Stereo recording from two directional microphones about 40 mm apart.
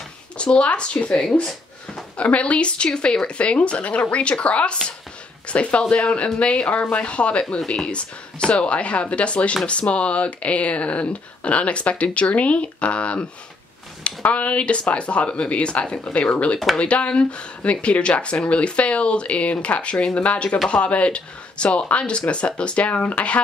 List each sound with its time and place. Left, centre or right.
0.4 s speech: left
2.1 s speech: left